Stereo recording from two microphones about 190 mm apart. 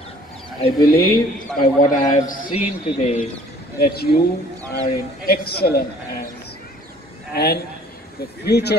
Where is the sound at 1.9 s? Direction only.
45° left (ahead or behind).